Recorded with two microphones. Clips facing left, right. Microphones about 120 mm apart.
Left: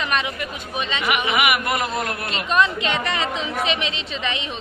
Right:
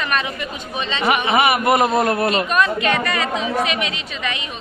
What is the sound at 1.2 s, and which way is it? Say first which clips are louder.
A man's voice: right 6 dB; 30° right (ahead or behind).